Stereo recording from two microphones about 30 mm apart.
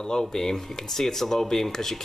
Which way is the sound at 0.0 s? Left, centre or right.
Left.